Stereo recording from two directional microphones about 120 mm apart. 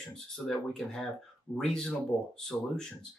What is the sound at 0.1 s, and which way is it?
Speech, 5° left (ahead or behind).